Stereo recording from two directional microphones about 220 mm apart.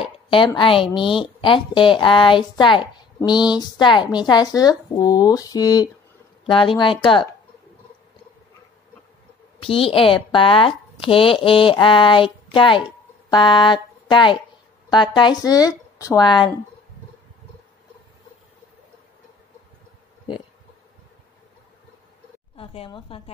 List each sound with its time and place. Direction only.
0.0 s a sound: 25° left (ahead or behind)
0.6 s speech: 25° left (ahead or behind)
9.8 s speech: 25° left (ahead or behind)
22.6 s speech: 25° left (ahead or behind)